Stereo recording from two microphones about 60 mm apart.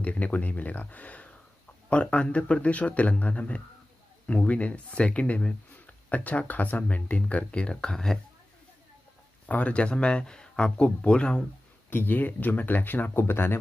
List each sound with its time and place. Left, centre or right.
0.0 s a man's voice: left; by 8.2 s centre
9.5 s speech: left
11.9 s speech: left
13.2 s speech: left